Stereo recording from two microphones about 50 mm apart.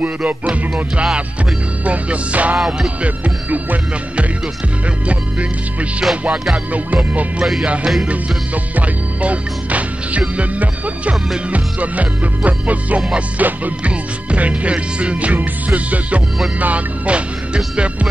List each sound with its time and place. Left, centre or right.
0.0 s music: right
8.7 s speech: right
10.3 s music: right